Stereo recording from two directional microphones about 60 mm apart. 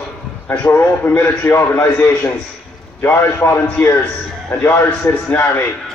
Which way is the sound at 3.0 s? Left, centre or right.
Left.